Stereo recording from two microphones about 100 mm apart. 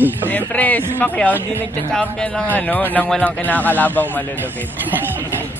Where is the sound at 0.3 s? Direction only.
15° left (ahead or behind).